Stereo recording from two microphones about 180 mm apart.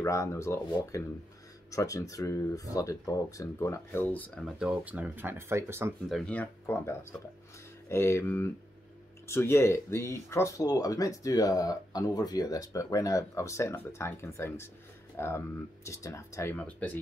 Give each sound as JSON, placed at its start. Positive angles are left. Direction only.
{"t": 0.0, "sound": "speech", "side_deg": 15}
{"t": 4.2, "sound": "speech", "side_deg": 5}
{"t": 4.6, "sound": "speech", "side_deg": -10}
{"t": 6.0, "sound": "speech", "side_deg": 5}